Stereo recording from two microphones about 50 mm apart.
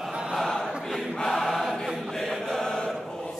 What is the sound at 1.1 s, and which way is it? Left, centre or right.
Choir, centre.